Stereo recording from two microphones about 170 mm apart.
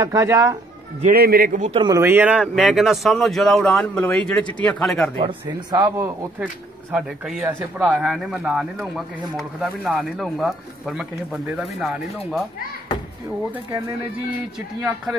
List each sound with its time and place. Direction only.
0.0 s speech: 20° right (ahead or behind)
1.0 s a man's voice: 60° right (ahead or behind)
1.7 s speech: 30° right (ahead or behind)
2.0 s speech: 15° right (ahead or behind); by 5.1 s 5° left (ahead or behind)
5.1 s speech: 30° right (ahead or behind)
6.4 s speech: 5° right (ahead or behind)
14.8 s speech: 5° right (ahead or behind)